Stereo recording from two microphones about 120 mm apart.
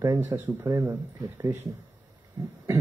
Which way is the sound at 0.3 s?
25° right (ahead or behind).